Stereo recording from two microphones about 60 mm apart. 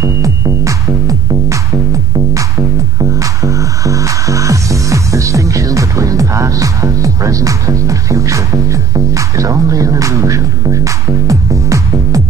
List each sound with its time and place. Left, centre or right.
0.0 s music: right
3.0 s music: right